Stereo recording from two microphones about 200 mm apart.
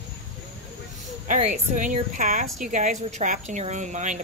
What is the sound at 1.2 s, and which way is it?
A woman's voice, 40° right (ahead or behind).